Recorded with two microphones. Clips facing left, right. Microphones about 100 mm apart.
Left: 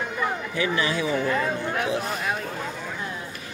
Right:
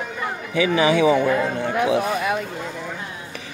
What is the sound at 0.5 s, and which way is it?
Speech, 90° right.